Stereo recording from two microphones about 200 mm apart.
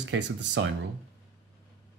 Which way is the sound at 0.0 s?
60° right (ahead or behind).